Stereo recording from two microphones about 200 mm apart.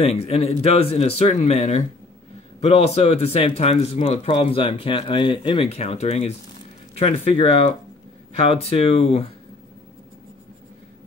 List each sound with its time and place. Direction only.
0.0 s speech: 30° left (ahead or behind)